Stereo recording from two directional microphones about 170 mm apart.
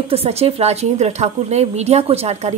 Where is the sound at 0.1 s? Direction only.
35° right (ahead or behind).